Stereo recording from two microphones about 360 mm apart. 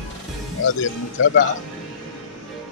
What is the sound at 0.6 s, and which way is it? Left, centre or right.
Speech, left.